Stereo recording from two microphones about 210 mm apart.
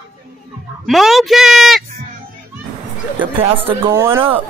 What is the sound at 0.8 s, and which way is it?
A woman's voice, centre (ahead or behind).